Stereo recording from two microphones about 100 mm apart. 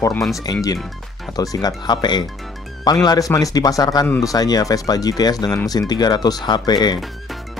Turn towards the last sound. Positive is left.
turn(degrees=45)  # may be behind; listen again after turning